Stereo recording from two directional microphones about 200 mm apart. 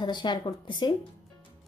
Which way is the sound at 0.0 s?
20° left (ahead or behind).